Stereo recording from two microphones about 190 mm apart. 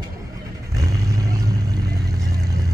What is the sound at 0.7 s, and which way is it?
Music, 20° right (ahead or behind).